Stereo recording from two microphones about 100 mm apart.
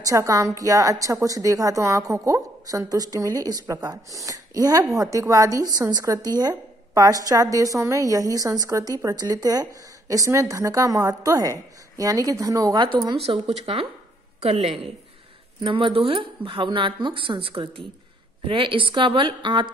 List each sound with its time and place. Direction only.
0.0 s a woman's voice: 30° right (ahead or behind)
13.2 s speech: 75° right (ahead or behind)
14.4 s a woman's voice: 90° right
15.6 s a woman's voice: 55° right (ahead or behind)